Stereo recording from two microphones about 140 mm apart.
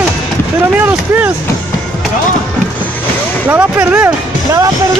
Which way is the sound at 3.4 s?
15° right (ahead or behind).